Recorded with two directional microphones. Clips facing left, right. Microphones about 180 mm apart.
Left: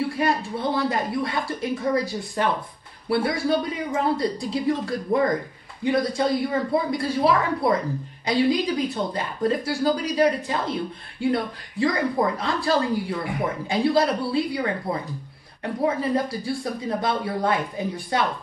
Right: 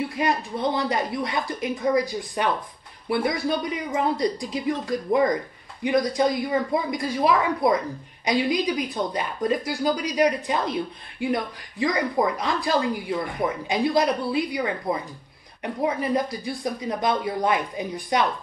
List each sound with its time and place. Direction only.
0.1 s speech: 20° right (ahead or behind)